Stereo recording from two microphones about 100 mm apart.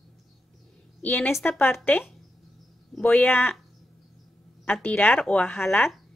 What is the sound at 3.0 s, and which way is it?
Speech, 15° left (ahead or behind).